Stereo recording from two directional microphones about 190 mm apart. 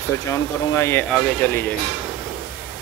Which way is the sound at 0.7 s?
15° left (ahead or behind).